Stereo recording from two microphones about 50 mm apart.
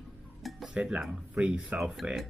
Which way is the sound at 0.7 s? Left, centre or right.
Right.